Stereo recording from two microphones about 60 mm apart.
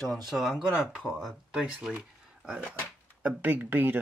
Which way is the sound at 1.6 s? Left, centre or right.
Centre.